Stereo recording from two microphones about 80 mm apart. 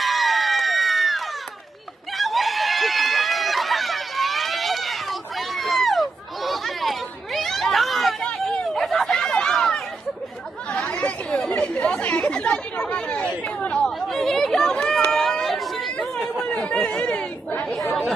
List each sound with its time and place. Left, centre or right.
0.0 s crowd: centre
2.1 s a sound: centre
8.3 s chatter: centre
8.6 s a sound: centre
10.7 s chatter: centre
16.5 s chatter: centre